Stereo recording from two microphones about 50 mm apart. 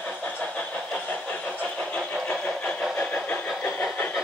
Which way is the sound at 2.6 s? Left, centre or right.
Left.